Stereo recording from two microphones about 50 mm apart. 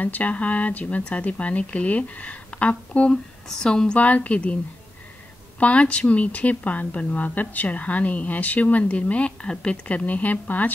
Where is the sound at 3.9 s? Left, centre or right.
Left.